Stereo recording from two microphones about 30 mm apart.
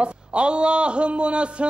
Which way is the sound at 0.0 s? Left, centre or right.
Right.